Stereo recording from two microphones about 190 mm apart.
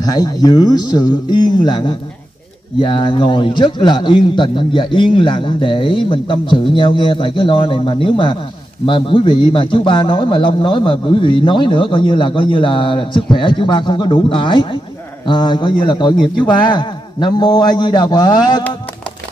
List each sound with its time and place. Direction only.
0.0 s a man's voice: 20° left (ahead or behind)